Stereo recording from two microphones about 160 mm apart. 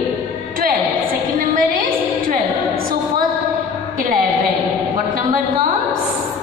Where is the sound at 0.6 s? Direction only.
60° right (ahead or behind).